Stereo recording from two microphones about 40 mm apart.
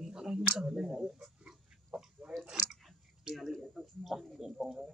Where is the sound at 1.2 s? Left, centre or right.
Centre.